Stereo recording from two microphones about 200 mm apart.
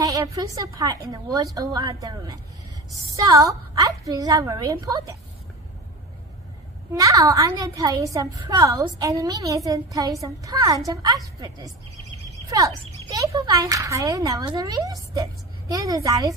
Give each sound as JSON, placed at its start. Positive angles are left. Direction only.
{"t": 0.0, "sound": "a woman's voice", "side_deg": -15}
{"t": 6.9, "sound": "a woman's voice", "side_deg": -15}